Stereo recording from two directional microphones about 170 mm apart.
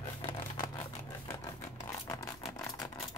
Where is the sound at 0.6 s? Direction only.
20° left (ahead or behind).